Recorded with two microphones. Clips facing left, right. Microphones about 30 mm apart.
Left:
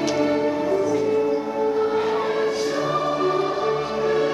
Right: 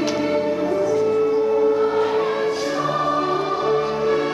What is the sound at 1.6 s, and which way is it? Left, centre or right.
Choir, centre.